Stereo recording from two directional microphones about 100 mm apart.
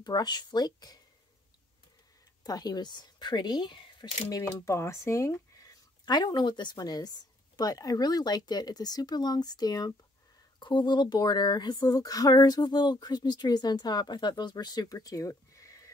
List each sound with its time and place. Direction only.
0.0 s speech: 45° left (ahead or behind)
2.4 s a woman's voice: 40° left (ahead or behind)
4.5 s speech: 30° left (ahead or behind)